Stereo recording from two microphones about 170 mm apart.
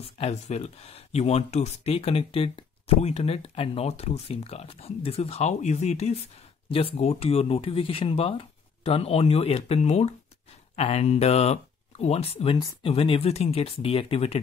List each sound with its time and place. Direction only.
0.0 s speech: 40° left (ahead or behind)